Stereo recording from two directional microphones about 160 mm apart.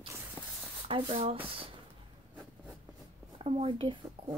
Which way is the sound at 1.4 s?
35° right (ahead or behind).